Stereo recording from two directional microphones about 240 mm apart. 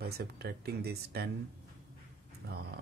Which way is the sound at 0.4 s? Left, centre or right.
Right.